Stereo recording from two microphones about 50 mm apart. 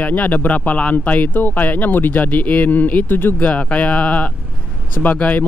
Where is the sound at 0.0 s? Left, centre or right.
Left.